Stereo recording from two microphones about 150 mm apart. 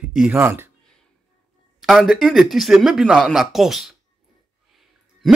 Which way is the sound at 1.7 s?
Centre (ahead or behind).